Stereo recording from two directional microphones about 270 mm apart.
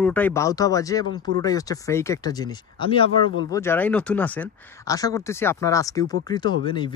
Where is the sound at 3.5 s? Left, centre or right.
Centre.